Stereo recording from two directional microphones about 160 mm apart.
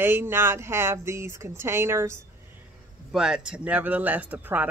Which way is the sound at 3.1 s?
5° right (ahead or behind).